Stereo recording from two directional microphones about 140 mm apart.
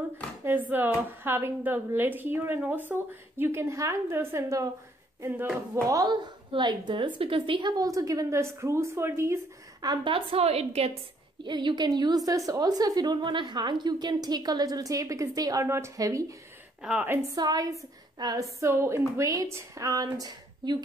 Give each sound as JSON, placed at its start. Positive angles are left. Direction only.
{"t": 0.4, "sound": "a woman's voice", "side_deg": -15}
{"t": 5.9, "sound": "a woman's voice", "side_deg": -25}
{"t": 10.1, "sound": "a woman's voice", "side_deg": -45}
{"t": 11.4, "sound": "a woman's voice", "side_deg": -30}
{"t": 16.8, "sound": "a woman's voice", "side_deg": -10}
{"t": 17.4, "sound": "a woman's voice", "side_deg": -30}